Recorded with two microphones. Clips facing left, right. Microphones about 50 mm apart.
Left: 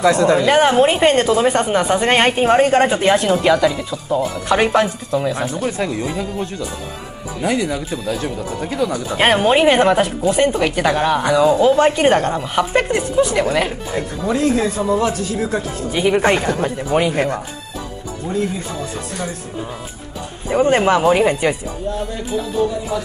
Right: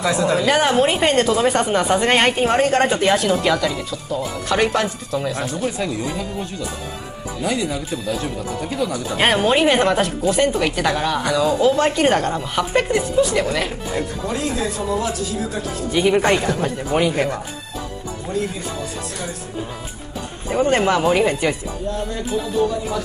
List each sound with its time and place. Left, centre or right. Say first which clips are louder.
0.1 s a woman's voice: left 4 dB; centre
0.5 s speech: left 2 dB; centre
7.4 s speech: left 3 dB; left
9.1 s speech: left 3 dB; centre
14.2 s a man's voice: left 10 dB; left
15.9 s speech: left 1 dB; centre
16.3 s speech: left 2 dB; centre
20.4 s speech: left 3 dB; centre
22.3 s music: left 2 dB; centre